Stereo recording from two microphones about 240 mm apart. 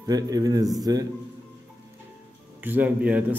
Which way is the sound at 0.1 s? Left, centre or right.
Centre.